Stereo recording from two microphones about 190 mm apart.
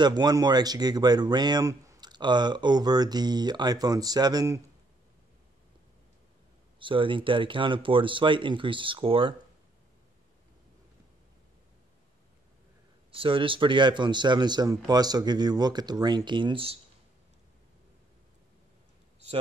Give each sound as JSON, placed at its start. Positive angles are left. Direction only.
{"t": 0.0, "sound": "speech", "side_deg": -20}
{"t": 6.8, "sound": "speech", "side_deg": -25}
{"t": 13.1, "sound": "speech", "side_deg": -30}